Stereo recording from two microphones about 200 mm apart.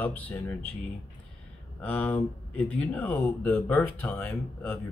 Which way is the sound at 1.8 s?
10° left (ahead or behind).